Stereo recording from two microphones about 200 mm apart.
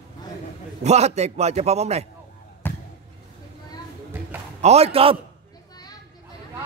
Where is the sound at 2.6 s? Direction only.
10° left (ahead or behind).